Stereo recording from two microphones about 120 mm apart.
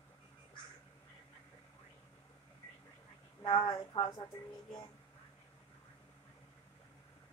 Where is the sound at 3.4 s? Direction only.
45° left (ahead or behind).